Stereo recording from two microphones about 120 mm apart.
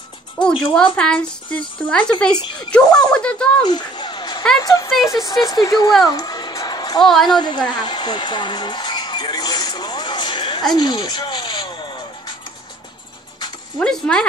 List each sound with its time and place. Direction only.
0.4 s music: 10° left (ahead or behind)
0.9 s speech: 10° left (ahead or behind)
3.6 s a sound: 35° left (ahead or behind)
4.6 s speech: 25° left (ahead or behind)
6.0 s music: 30° left (ahead or behind)
7.2 s a sound: 40° left (ahead or behind)
10.8 s music: 35° left (ahead or behind)
13.7 s speech: 5° left (ahead or behind)